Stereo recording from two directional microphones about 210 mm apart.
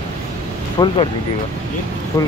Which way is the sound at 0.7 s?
25° left (ahead or behind).